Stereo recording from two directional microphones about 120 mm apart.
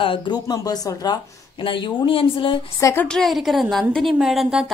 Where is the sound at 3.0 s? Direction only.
Centre (ahead or behind).